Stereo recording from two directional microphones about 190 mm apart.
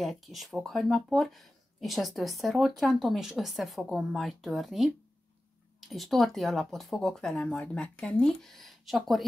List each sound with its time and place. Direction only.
0.0 s speech: centre (ahead or behind)